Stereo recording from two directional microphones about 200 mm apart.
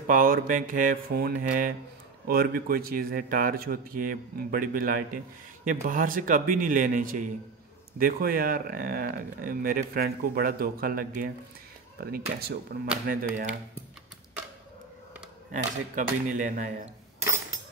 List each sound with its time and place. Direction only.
0.0 s speech: 45° right (ahead or behind)
15.5 s speech: 40° right (ahead or behind)